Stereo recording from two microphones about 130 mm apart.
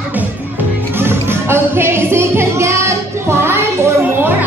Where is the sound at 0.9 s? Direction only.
15° right (ahead or behind).